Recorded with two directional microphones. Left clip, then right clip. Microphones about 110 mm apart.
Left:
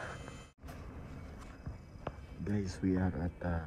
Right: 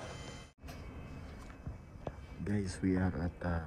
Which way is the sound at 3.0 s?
30° right (ahead or behind).